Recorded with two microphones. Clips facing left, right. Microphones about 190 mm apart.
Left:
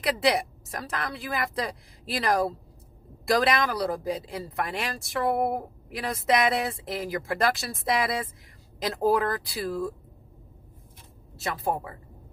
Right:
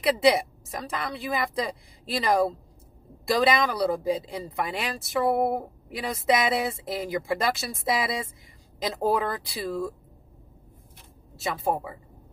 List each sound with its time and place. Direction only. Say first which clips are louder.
0.0 s speech: right 4 dB; centre (ahead or behind)
11.3 s speech: right 2 dB; centre (ahead or behind)